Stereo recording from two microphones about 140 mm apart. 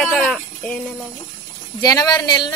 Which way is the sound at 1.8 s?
30° left (ahead or behind).